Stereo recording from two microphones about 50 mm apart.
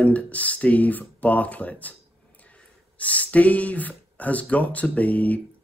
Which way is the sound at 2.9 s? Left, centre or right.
Left.